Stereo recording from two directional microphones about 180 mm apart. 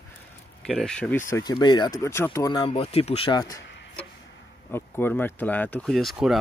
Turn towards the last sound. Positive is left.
turn(degrees=0)  # may be behind; listen again after turning